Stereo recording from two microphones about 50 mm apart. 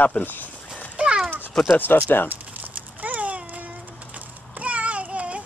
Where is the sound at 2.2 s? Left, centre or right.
Right.